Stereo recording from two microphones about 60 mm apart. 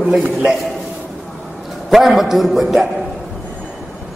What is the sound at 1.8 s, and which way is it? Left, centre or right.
A man's voice, centre.